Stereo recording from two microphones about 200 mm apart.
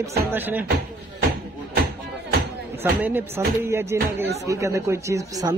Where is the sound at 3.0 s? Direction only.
10° right (ahead or behind).